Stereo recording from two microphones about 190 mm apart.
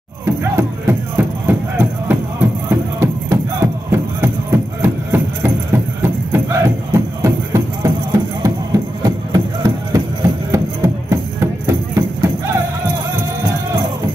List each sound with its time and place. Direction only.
0.2 s music: 15° right (ahead or behind)